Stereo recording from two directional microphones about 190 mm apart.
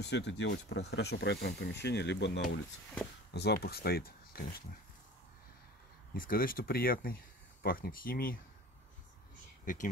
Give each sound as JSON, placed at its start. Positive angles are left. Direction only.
{"t": 0.0, "sound": "speech", "side_deg": 65}
{"t": 6.1, "sound": "speech", "side_deg": 50}
{"t": 9.7, "sound": "speech", "side_deg": 45}